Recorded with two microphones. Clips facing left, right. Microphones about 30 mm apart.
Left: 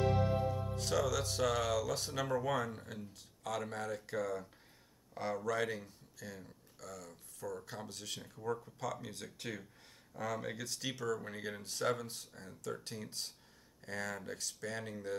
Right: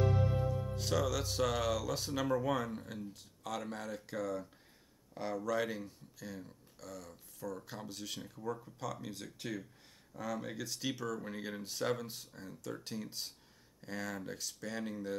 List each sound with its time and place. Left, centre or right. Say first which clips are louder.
0.1 s music: left 1 dB; left
0.7 s speech: even; centre